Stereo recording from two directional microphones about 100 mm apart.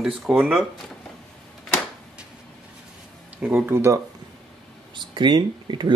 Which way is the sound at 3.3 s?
15° right (ahead or behind).